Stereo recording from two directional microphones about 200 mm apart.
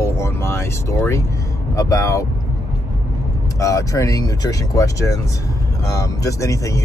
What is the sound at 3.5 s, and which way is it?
Speech, 15° left (ahead or behind).